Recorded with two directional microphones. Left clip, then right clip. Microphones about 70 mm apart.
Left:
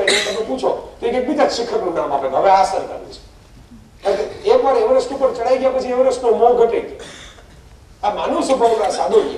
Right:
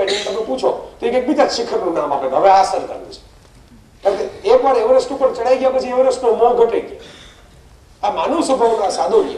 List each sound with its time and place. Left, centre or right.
0.0 s cough: left
0.6 s a woman's voice: right
8.0 s speech: right
8.6 s a man's voice: left